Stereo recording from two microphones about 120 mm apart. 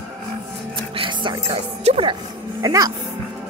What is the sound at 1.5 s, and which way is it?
Speech, 55° right (ahead or behind).